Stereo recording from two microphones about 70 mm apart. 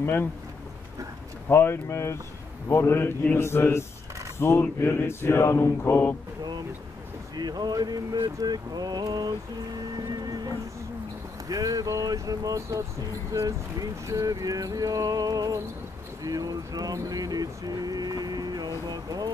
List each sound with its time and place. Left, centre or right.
0.0 s mantra: left
1.5 s mantra: left
7.3 s speech: right
9.9 s music: right
11.4 s a sound: right
16.2 s speech: right